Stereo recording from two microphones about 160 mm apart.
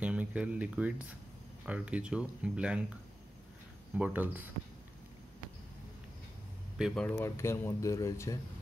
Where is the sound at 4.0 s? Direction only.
10° right (ahead or behind).